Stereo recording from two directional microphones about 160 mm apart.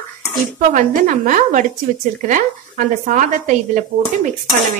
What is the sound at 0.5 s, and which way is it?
Speech, 50° right (ahead or behind).